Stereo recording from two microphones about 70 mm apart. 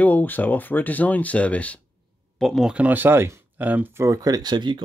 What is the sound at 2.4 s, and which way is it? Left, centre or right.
Speech, centre.